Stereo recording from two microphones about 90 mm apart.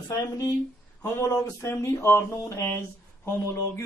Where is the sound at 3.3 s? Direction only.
30° left (ahead or behind).